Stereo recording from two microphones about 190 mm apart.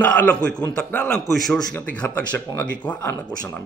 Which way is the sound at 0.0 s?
5° left (ahead or behind).